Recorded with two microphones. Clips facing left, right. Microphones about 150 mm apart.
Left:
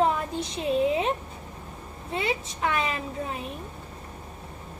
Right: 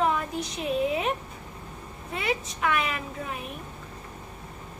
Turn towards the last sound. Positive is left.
turn(degrees=30)  # may be behind; listen again after turning